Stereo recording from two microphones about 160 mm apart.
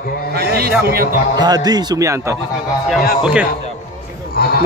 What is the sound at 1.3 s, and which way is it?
A man's voice, 25° right (ahead or behind).